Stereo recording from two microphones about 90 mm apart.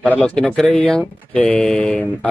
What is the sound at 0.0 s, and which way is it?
Speech, 10° left (ahead or behind).